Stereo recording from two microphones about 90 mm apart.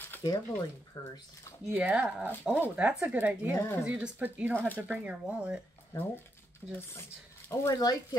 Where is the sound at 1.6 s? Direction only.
15° right (ahead or behind).